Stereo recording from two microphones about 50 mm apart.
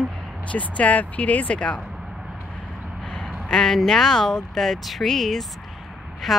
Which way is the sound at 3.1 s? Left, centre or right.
Centre.